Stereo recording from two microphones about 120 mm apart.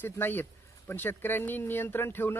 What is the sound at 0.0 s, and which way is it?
Speech, 15° left (ahead or behind).